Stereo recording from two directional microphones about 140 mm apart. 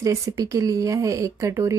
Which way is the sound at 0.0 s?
25° right (ahead or behind).